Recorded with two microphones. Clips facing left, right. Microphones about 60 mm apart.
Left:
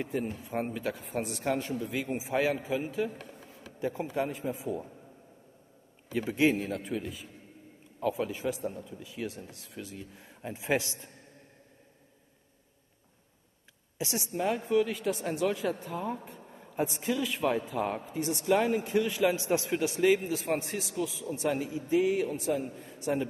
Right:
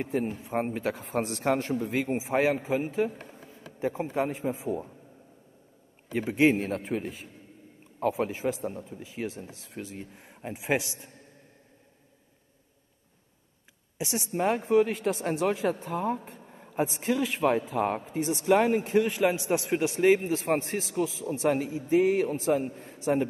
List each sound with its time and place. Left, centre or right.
0.3 s a man's voice: right
1.0 s a man's voice: right
3.2 s a sound: right
3.8 s speech: right
6.1 s a man's voice: right
6.6 s a man's voice: right; by 11.1 s centre
13.9 s a man's voice: right